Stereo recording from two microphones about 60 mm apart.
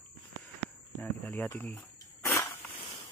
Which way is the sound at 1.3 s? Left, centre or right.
Left.